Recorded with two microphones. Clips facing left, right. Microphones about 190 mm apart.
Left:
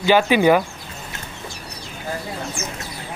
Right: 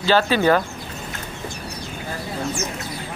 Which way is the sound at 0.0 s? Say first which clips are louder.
Left 2 dB; 15° left (ahead or behind).